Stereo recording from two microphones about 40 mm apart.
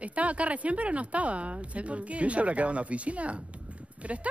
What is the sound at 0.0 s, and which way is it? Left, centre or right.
Speech, right.